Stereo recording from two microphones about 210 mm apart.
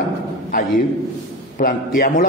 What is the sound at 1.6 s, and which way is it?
Speech, 45° left (ahead or behind).